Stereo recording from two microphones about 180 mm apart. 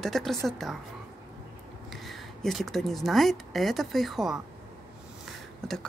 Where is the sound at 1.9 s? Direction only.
Centre (ahead or behind).